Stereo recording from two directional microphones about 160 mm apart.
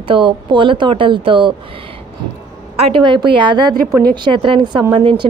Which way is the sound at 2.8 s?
30° right (ahead or behind).